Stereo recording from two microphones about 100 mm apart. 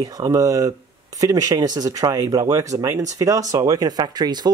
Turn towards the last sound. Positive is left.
turn(degrees=-45)  # may be behind; listen again after turning